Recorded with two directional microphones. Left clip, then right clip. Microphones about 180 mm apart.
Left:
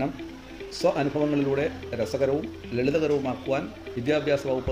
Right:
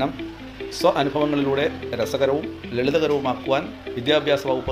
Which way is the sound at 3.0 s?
40° right (ahead or behind).